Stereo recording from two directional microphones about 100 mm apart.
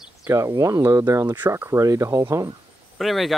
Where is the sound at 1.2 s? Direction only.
20° right (ahead or behind).